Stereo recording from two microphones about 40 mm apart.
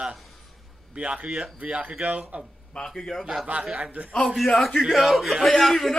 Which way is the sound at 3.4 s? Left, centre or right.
Right.